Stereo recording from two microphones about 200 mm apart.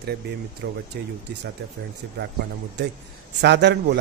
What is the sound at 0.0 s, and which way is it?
A man's voice, 55° right (ahead or behind).